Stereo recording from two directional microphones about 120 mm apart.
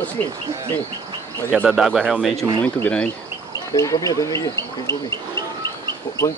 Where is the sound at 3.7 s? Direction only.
30° left (ahead or behind).